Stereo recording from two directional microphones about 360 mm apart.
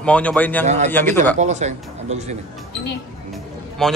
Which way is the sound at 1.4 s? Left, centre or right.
Centre.